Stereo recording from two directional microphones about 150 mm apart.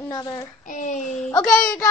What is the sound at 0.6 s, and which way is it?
Child singing, 55° left (ahead or behind).